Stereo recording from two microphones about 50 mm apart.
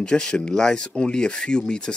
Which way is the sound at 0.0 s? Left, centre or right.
Centre.